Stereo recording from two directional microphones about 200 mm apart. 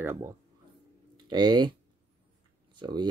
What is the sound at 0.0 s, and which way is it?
Speech, 15° right (ahead or behind).